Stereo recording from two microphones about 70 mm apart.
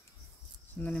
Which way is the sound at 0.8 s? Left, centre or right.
Left.